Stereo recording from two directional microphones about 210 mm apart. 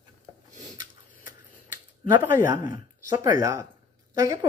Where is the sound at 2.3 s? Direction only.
15° right (ahead or behind).